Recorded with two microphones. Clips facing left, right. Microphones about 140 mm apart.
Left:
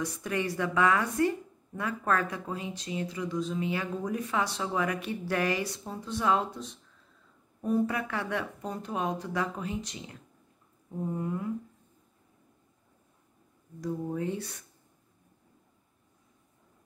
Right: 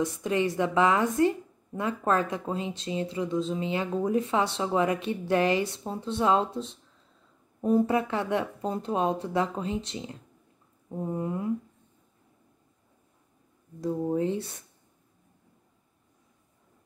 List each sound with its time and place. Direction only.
0.0 s speech: 20° right (ahead or behind)
13.7 s speech: 25° right (ahead or behind)